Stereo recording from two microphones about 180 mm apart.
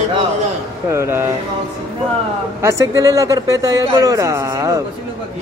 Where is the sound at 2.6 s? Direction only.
15° right (ahead or behind).